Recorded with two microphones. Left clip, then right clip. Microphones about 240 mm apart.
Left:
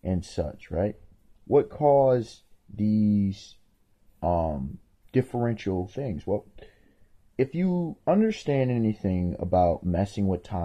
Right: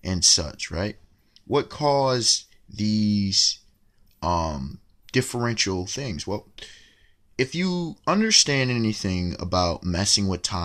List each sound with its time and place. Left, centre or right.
0.0 s speech: centre
7.3 s speech: centre